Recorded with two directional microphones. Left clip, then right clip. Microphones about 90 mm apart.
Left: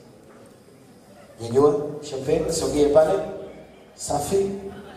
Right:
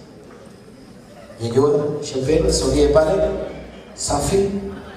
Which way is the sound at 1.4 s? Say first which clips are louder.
Right 2 dB; 40° left (ahead or behind).